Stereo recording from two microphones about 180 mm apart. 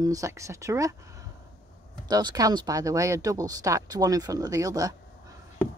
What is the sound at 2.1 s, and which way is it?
Speech, 20° right (ahead or behind).